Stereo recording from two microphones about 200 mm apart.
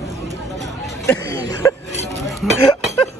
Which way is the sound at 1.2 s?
55° right (ahead or behind).